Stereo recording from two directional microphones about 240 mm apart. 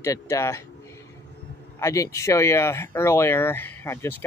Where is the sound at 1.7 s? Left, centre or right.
Centre.